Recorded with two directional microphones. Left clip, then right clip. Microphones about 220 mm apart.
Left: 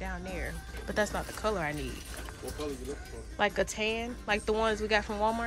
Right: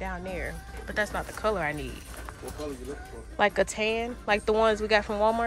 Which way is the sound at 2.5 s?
15° right (ahead or behind).